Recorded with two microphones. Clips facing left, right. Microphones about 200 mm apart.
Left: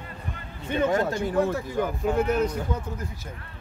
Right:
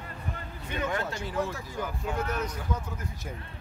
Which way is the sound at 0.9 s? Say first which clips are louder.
Left 8 dB; 50° left (ahead or behind).